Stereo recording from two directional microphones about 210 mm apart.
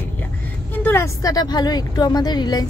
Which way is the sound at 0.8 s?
15° left (ahead or behind).